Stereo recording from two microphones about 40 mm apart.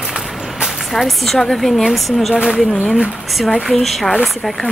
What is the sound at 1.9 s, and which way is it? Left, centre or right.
Speech, centre.